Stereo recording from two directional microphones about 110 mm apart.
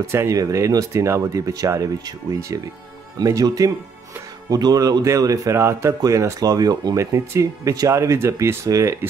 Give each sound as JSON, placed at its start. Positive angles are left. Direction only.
{"t": 0.0, "sound": "a man's voice", "side_deg": -25}